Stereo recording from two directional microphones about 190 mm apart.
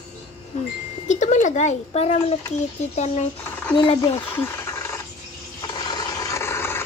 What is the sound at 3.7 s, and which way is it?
Speech, 25° left (ahead or behind).